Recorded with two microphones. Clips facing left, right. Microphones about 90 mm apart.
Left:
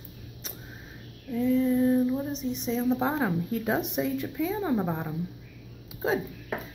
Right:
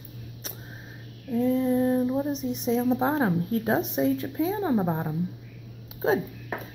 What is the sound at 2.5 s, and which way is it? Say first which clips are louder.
Speech: right 6 dB; 45° right (ahead or behind).